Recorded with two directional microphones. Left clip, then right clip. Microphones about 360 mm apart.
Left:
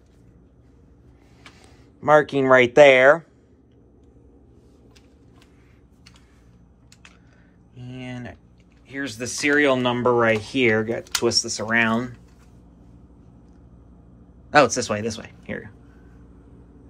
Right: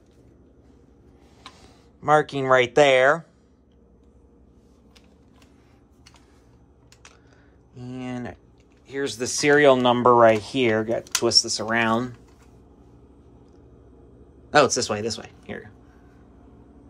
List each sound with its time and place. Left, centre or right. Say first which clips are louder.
1.5 s speech: even; centre
7.7 s a sound: right 3 dB; centre
8.8 s speech: right 2 dB; centre
14.5 s speech: left 1 dB; centre